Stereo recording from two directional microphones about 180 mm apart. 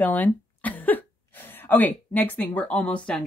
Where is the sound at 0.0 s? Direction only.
10° left (ahead or behind).